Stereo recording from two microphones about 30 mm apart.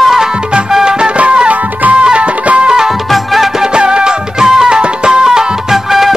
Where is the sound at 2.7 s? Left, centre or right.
Right.